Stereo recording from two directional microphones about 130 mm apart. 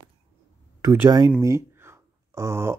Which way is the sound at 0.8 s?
25° right (ahead or behind).